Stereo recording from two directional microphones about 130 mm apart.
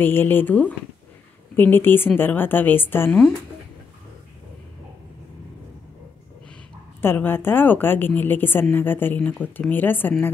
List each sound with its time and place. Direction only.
0.0 s a woman's voice: 15° left (ahead or behind)
7.0 s a woman's voice: 15° left (ahead or behind)